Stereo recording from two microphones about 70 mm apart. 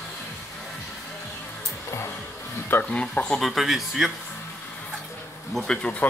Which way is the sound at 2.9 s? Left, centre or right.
Centre.